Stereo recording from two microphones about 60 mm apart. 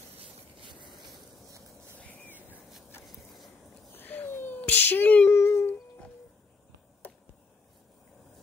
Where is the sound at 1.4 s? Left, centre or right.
Right.